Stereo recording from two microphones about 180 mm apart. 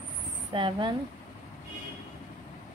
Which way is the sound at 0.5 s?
25° right (ahead or behind).